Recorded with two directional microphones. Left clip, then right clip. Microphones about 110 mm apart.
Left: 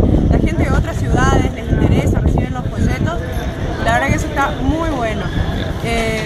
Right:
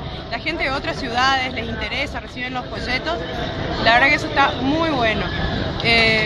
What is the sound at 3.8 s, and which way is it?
Speech, 30° right (ahead or behind).